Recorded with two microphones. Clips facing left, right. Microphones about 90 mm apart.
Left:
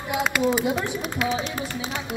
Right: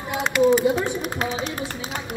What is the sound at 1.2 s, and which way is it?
Speech, 40° right (ahead or behind).